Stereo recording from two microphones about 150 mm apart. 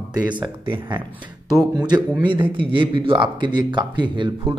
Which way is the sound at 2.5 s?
35° right (ahead or behind).